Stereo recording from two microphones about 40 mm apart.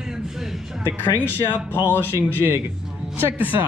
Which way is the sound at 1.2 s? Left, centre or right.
Right.